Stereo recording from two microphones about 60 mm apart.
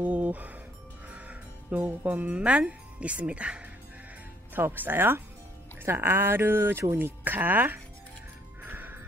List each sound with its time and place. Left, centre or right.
0.0 s speech: right
4.6 s speech: right
8.6 s music: right